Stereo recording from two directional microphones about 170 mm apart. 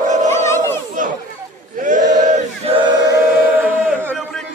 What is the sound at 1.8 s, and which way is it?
Choir, 50° right (ahead or behind).